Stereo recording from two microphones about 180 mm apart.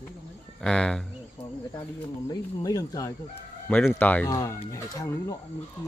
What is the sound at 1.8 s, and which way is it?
Speech, 20° left (ahead or behind).